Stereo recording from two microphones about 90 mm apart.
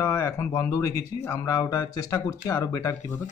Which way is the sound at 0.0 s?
30° left (ahead or behind).